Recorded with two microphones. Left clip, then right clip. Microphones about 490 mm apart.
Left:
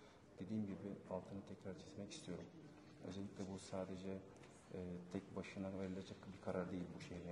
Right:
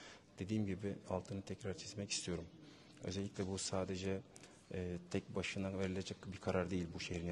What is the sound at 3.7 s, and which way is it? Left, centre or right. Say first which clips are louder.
Speech: right 5 dB; right.